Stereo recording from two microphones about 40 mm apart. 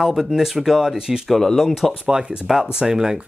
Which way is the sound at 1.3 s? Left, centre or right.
Centre.